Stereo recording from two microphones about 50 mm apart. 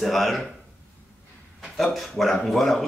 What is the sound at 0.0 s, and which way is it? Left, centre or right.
Speech, centre.